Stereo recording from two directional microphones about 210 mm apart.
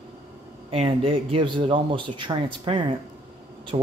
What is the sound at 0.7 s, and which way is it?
Speech, 25° right (ahead or behind).